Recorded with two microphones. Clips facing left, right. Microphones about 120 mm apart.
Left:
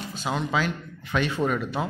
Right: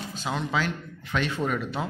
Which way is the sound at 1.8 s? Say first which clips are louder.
Left 2 dB; 10° left (ahead or behind).